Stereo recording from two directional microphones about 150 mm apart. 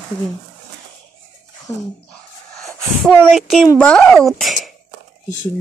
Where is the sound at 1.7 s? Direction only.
15° left (ahead or behind).